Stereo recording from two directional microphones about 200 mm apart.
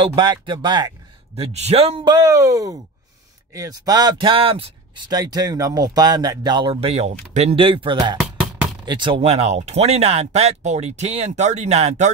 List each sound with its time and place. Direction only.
0.0 s speech: 25° right (ahead or behind)
8.2 s music: 5° right (ahead or behind)
8.8 s speech: 25° right (ahead or behind)